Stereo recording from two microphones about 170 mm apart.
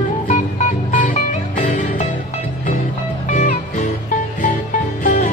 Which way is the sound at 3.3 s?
45° left (ahead or behind).